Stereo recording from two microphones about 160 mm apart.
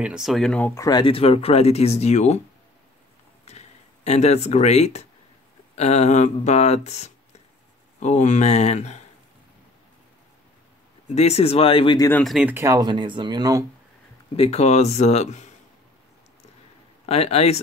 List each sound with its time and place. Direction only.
0.0 s speech: 5° right (ahead or behind)
0.7 s speech: 25° left (ahead or behind); by 2.4 s 45° left (ahead or behind)
3.4 s a sound: 45° left (ahead or behind)
5.8 s speech: 45° left (ahead or behind)
11.1 s speech: 40° left (ahead or behind)
12.2 s speech: centre (ahead or behind)
12.4 s speech: 15° right (ahead or behind)
14.3 s speech: 40° left (ahead or behind)
17.0 s speech: 40° left (ahead or behind)